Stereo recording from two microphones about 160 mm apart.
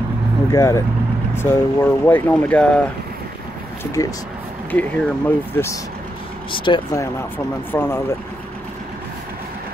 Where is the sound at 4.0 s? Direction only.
20° left (ahead or behind).